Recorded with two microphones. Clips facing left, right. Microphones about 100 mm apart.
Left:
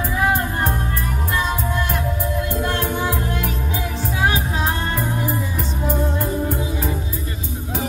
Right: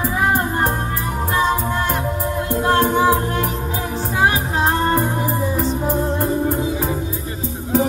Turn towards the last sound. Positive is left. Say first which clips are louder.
# right 3 dB
turn(degrees=-35)  # may be behind; listen again after turning